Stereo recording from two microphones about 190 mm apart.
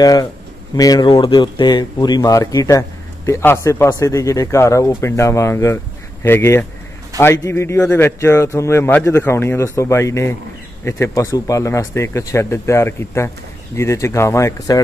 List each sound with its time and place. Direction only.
0.0 s a man's voice: 20° left (ahead or behind)